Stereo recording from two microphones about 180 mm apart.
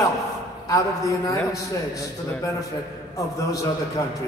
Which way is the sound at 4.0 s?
20° left (ahead or behind).